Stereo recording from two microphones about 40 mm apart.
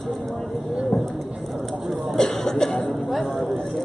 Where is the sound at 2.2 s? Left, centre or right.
Centre.